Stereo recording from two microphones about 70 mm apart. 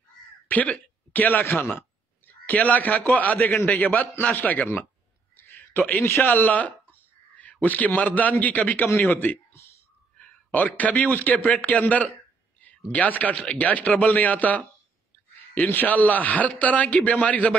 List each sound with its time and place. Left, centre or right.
0.5 s speech: left
1.4 s speech: left
1.7 s a sound: left
3.1 s a man's voice: left
5.3 s a sound: left
7.6 s a man's voice: left
10.5 s a man's voice: left